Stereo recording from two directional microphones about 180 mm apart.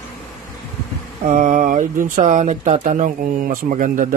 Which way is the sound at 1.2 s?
45° right (ahead or behind).